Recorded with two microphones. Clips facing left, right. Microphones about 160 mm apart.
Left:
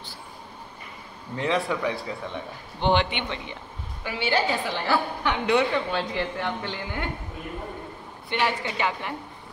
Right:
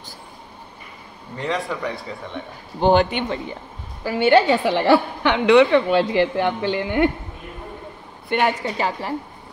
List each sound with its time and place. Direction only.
1.3 s a man's voice: centre (ahead or behind)
2.8 s a man's voice: 40° right (ahead or behind)
4.3 s a woman's voice: 70° right (ahead or behind)
8.3 s a woman's voice: 50° right (ahead or behind)
8.6 s a man's voice: 35° right (ahead or behind)